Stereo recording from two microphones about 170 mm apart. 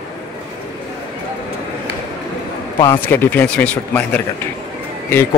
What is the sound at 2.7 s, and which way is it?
Speech, 25° left (ahead or behind).